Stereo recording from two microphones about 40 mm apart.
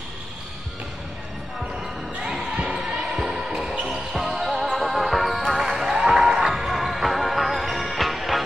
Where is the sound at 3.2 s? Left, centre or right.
Centre.